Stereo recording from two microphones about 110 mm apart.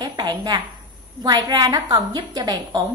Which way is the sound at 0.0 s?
30° right (ahead or behind).